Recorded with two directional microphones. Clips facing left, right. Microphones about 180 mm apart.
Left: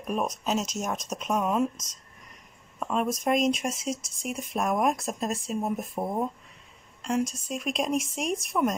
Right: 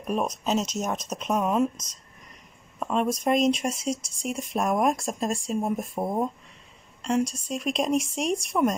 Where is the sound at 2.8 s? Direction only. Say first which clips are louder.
Right 2 dB; centre (ahead or behind).